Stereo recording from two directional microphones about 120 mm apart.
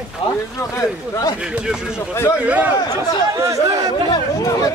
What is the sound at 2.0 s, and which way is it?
Speech, 20° left (ahead or behind).